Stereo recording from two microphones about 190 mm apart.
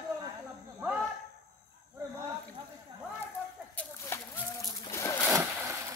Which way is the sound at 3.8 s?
10° left (ahead or behind).